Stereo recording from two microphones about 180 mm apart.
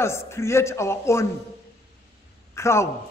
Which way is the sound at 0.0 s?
15° left (ahead or behind).